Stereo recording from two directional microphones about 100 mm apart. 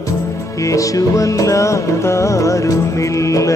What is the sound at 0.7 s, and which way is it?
Music, 35° left (ahead or behind).